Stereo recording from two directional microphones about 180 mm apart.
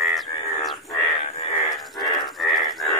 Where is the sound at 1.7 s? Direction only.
Centre (ahead or behind).